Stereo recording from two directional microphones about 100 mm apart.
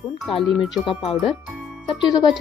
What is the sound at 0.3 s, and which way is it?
Speech, 65° left (ahead or behind).